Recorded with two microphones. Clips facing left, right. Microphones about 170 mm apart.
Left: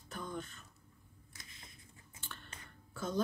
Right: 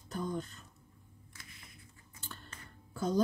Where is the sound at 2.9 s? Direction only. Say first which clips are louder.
Right 5 dB; 35° right (ahead or behind).